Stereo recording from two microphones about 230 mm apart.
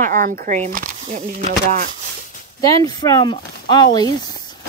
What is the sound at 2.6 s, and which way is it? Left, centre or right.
Speech, centre.